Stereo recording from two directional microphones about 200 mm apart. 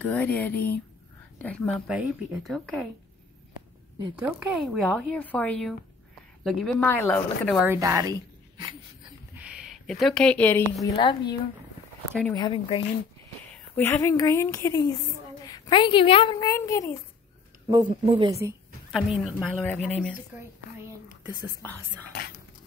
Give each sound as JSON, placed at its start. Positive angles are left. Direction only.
{"t": 0.0, "sound": "a woman's voice", "side_deg": 5}
{"t": 4.2, "sound": "a woman's voice", "side_deg": -5}
{"t": 7.6, "sound": "speech", "side_deg": -15}
{"t": 9.3, "sound": "speech", "side_deg": -5}
{"t": 12.1, "sound": "speech", "side_deg": 5}
{"t": 12.4, "sound": "a woman's voice", "side_deg": 25}
{"t": 13.7, "sound": "a woman's voice", "side_deg": 10}
{"t": 18.0, "sound": "speech", "side_deg": -25}
{"t": 18.9, "sound": "speech", "side_deg": 0}
{"t": 21.3, "sound": "speech", "side_deg": -20}